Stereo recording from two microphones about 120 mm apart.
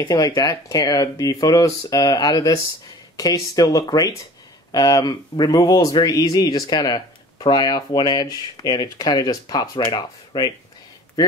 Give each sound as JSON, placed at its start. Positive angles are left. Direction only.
{"t": 0.0, "sound": "speech", "side_deg": 35}